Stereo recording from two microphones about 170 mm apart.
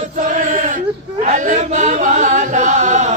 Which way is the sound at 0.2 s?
50° right (ahead or behind).